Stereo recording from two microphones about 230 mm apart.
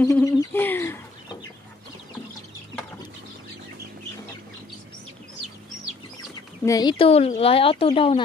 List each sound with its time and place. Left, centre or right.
0.0 s bird: centre
6.6 s speech: centre